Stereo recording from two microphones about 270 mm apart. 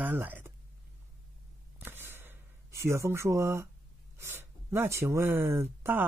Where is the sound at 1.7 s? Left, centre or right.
Centre.